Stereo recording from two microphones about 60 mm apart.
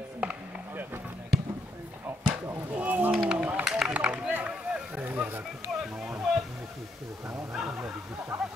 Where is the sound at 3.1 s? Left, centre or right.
Centre.